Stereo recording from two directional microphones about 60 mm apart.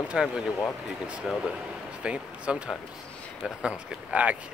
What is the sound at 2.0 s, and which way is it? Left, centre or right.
Speech, centre.